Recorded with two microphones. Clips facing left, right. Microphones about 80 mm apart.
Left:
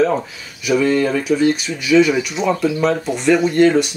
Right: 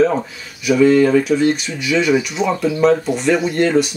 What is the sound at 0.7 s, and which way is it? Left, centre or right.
Speech, centre.